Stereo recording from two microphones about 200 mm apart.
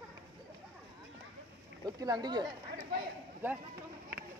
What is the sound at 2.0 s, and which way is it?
Speech, 20° right (ahead or behind).